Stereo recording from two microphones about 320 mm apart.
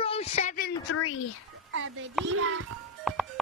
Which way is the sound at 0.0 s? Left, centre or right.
Centre.